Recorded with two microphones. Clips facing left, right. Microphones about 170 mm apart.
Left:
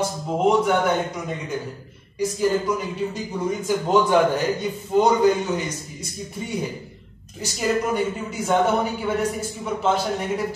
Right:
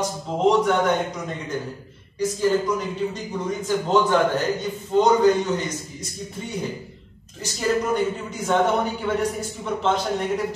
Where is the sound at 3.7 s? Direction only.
10° left (ahead or behind).